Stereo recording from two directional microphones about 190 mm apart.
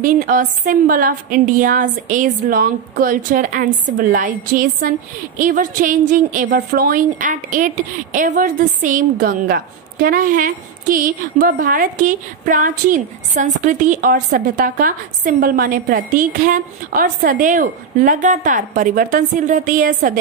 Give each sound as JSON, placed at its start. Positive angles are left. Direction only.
{"t": 0.0, "sound": "a woman's voice", "side_deg": -45}